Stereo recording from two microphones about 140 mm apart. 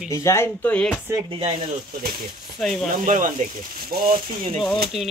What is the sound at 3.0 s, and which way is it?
Speech, 60° right (ahead or behind).